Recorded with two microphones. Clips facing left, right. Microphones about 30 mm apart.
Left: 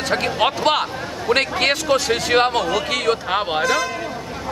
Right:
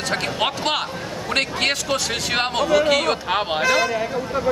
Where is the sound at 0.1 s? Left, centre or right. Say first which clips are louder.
Left 4 dB; centre.